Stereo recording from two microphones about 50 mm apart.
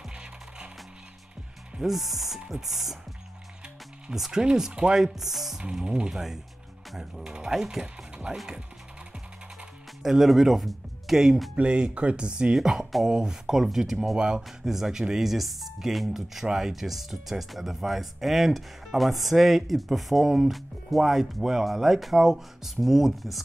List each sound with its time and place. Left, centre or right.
1.8 s speech: centre
4.1 s speech: centre
10.0 s speech: centre
11.5 s speech: right
12.5 s speech: centre